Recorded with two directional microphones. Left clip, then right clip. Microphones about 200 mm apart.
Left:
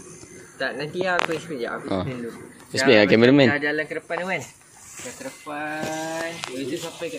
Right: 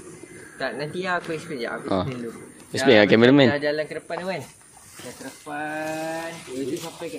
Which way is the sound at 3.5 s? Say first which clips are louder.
Left 1 dB; 30° right (ahead or behind).